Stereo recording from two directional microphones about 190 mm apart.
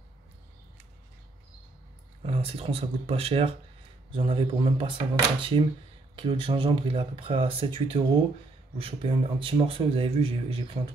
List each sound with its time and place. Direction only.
2.2 s speech: 30° right (ahead or behind)